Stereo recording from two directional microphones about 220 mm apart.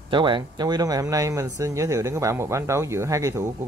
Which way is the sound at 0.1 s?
20° right (ahead or behind).